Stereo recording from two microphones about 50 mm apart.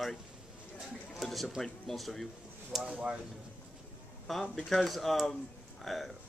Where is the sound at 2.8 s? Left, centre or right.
Right.